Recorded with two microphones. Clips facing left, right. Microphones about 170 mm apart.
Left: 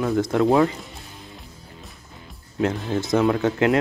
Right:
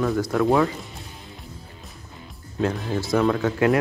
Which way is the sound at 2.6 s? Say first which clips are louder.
Left 1 dB; 20° left (ahead or behind).